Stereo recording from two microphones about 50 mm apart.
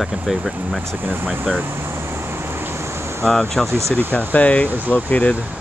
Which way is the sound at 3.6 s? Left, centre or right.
Right.